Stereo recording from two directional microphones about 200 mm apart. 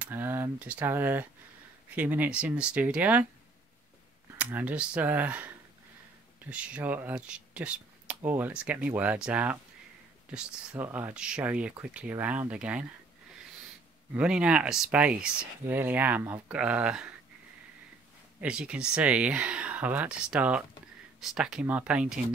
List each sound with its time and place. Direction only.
0.0 s speech: 10° right (ahead or behind)
4.4 s speech: 10° right (ahead or behind)
14.1 s speech: 5° right (ahead or behind)
18.4 s speech: 5° right (ahead or behind)